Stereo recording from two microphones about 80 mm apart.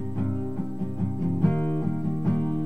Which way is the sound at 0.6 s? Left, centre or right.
Centre.